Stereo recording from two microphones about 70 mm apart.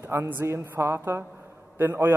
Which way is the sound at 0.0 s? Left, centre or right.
Right.